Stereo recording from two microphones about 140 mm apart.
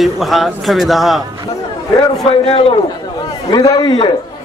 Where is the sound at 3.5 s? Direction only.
30° left (ahead or behind).